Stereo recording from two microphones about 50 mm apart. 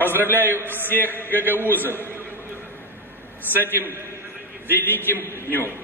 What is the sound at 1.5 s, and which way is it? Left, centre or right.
Speech, left.